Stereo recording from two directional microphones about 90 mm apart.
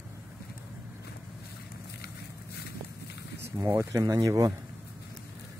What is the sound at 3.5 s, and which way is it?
Speech, 30° right (ahead or behind).